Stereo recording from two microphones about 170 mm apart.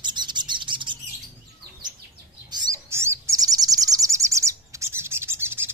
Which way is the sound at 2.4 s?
25° right (ahead or behind).